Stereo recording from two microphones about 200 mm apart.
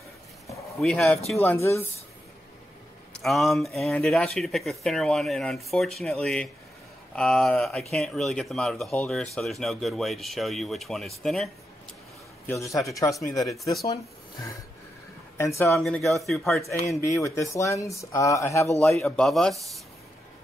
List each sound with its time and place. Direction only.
0.7 s speech: 5° left (ahead or behind)
3.1 s speech: centre (ahead or behind)
12.4 s a man's voice: 15° left (ahead or behind)
15.3 s speech: 15° left (ahead or behind)
15.7 s speech: centre (ahead or behind)
16.8 s speech: 15° left (ahead or behind)
18.8 s speech: centre (ahead or behind)